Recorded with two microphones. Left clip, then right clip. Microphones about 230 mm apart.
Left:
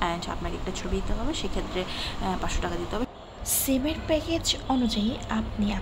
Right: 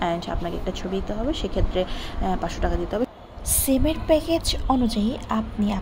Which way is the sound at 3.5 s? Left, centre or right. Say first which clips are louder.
Right 4 dB; right.